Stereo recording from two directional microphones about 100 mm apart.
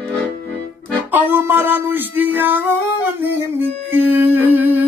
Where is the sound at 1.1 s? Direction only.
20° right (ahead or behind).